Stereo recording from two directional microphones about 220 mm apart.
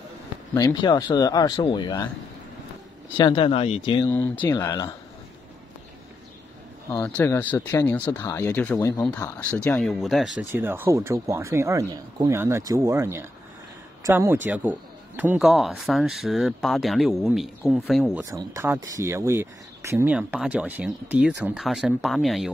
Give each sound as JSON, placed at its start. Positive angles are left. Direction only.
{"t": 0.6, "sound": "speech", "side_deg": 15}
{"t": 3.2, "sound": "speech", "side_deg": 20}
{"t": 4.1, "sound": "speech", "side_deg": 10}
{"t": 7.0, "sound": "a man's voice", "side_deg": 10}
{"t": 18.3, "sound": "a man's voice", "side_deg": -15}